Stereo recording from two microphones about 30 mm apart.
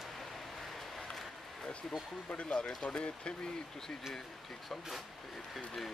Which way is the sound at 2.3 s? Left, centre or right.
Left.